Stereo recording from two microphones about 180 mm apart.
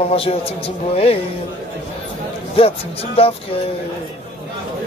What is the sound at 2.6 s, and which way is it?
Speech, 30° left (ahead or behind).